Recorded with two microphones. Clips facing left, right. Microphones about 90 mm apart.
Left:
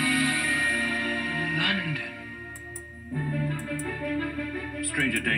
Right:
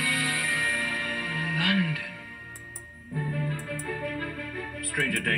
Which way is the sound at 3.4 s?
15° left (ahead or behind).